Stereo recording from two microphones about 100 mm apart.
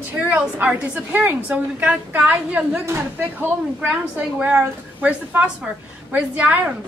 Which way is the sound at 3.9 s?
15° right (ahead or behind).